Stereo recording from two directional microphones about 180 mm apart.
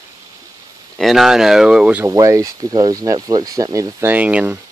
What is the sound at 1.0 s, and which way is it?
Speech, centre (ahead or behind).